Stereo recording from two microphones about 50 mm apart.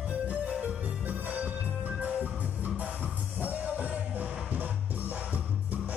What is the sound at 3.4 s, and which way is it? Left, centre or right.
Music, right.